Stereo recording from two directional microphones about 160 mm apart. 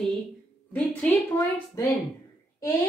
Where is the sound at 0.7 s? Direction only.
10° left (ahead or behind).